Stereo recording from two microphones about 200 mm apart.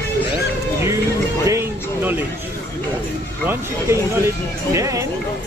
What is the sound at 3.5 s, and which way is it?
Speech, 15° right (ahead or behind).